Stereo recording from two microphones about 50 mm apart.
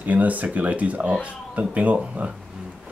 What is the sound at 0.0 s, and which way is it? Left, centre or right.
Speech, right.